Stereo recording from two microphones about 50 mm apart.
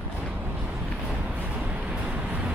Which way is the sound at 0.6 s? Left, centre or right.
Right.